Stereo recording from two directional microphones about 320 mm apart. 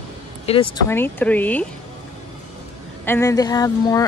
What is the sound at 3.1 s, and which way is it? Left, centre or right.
Speech, centre.